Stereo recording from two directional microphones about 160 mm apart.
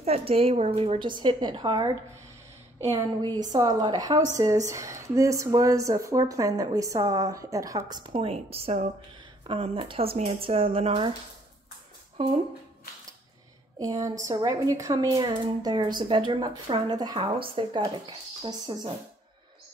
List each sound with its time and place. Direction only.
0.0 s a woman's voice: 40° right (ahead or behind); by 8.1 s 25° right (ahead or behind)
8.1 s a woman's voice: 40° right (ahead or behind)
13.7 s a woman's voice: 20° right (ahead or behind)